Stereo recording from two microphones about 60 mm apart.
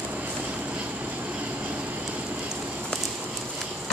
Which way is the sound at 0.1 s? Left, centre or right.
Right.